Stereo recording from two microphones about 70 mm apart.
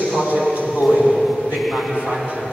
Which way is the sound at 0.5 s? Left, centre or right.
Centre.